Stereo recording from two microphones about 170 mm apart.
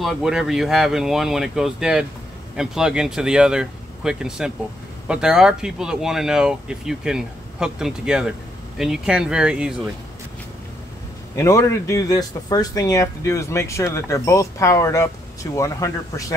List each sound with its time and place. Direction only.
0.0 s speech: centre (ahead or behind)
11.3 s speech: 15° left (ahead or behind)